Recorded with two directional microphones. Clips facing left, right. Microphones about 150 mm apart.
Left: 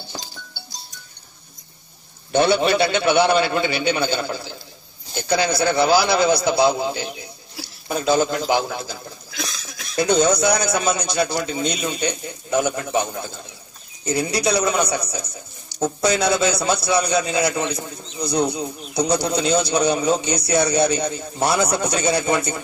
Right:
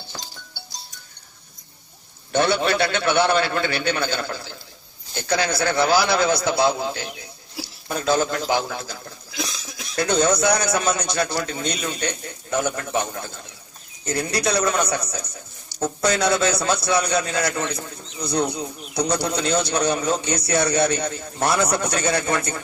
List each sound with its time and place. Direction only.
0.1 s music: 20° left (ahead or behind)
2.3 s a man's voice: 25° left (ahead or behind)
9.3 s cough: 15° right (ahead or behind)
9.9 s a man's voice: 15° left (ahead or behind)
21.6 s speech: 5° left (ahead or behind)
21.9 s a man's voice: 15° left (ahead or behind)